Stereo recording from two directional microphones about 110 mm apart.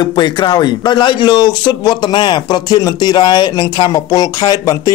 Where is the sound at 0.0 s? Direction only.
40° left (ahead or behind).